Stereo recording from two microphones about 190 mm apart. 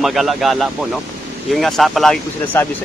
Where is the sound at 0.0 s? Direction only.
Centre (ahead or behind).